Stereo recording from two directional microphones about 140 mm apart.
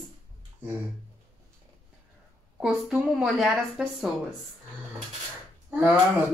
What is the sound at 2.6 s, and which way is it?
A woman's voice, 5° right (ahead or behind).